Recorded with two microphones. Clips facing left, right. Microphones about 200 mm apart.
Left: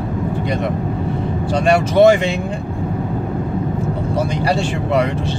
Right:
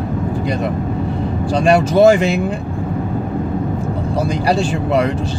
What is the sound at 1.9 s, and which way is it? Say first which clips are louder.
Speech: even; centre (ahead or behind).